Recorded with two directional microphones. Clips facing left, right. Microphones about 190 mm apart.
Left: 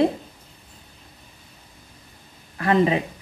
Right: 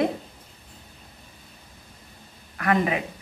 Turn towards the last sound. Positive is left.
turn(degrees=25)  # may be behind; listen again after turning